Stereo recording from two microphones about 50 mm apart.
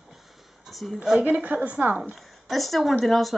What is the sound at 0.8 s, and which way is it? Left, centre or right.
Speech, centre.